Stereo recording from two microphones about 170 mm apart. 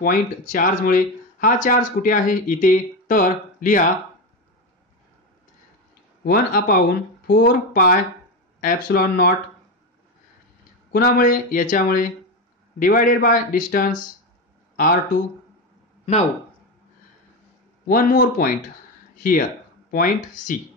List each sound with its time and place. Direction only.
0.0 s speech: 55° left (ahead or behind)
6.2 s speech: 60° left (ahead or behind)
10.9 s speech: 60° left (ahead or behind)
17.8 s speech: 55° left (ahead or behind)